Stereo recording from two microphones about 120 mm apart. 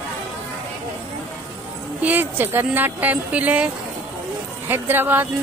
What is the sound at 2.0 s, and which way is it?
Speech, 15° right (ahead or behind).